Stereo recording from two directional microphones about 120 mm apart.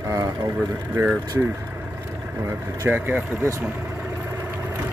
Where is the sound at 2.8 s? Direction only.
15° right (ahead or behind).